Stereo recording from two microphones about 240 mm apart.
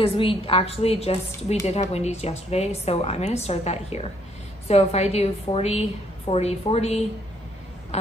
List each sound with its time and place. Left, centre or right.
0.0 s speech: left